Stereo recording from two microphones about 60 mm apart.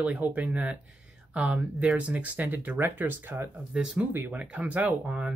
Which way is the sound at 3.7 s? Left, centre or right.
Centre.